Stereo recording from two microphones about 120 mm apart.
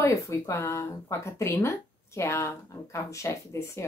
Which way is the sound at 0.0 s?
25° left (ahead or behind).